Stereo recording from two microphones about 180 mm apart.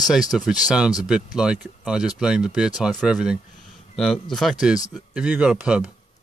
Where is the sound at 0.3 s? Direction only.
Centre (ahead or behind).